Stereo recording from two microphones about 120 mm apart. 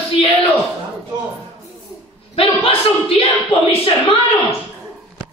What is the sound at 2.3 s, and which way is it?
Speech, 50° left (ahead or behind).